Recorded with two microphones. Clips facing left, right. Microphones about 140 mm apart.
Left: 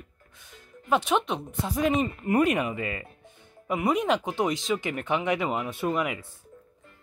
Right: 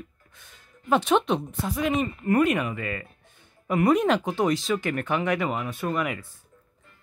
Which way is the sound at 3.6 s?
5° left (ahead or behind).